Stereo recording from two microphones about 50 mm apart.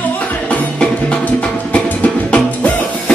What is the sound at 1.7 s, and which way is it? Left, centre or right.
Music, left.